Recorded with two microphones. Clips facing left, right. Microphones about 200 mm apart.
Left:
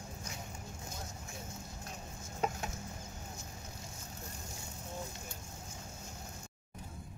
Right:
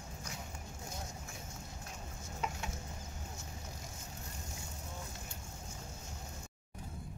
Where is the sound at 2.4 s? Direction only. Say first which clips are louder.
Left 5 dB; 40° left (ahead or behind).